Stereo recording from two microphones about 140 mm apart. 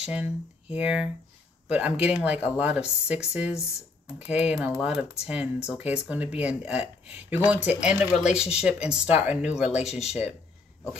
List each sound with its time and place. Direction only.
0.0 s speech: 10° right (ahead or behind)
9.4 s speech: 55° left (ahead or behind)